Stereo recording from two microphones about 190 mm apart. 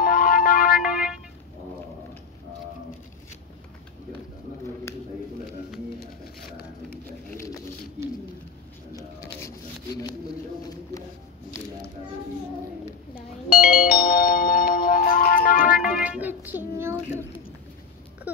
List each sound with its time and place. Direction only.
0.0 s music: 50° left (ahead or behind)
7.2 s patter: 15° left (ahead or behind)
8.9 s pigeon: 15° left (ahead or behind)
13.6 s music: 50° left (ahead or behind)
15.8 s music: 10° right (ahead or behind)